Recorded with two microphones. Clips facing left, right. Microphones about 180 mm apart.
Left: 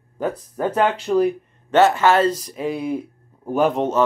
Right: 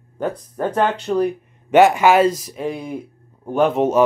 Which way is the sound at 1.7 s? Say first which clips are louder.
Right 3 dB; 15° right (ahead or behind).